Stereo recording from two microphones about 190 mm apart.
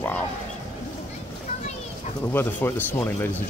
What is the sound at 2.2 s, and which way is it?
Speech, 10° left (ahead or behind).